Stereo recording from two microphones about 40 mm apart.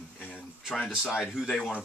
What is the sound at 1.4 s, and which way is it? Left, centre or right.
Speech, centre.